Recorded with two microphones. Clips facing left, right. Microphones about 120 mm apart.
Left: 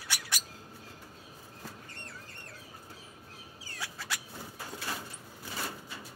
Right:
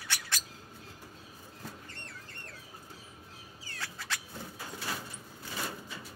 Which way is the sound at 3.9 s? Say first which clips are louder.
Even; 10° left (ahead or behind).